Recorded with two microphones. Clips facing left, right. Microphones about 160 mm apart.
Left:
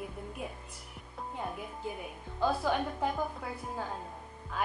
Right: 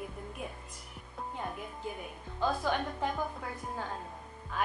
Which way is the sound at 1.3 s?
Centre (ahead or behind).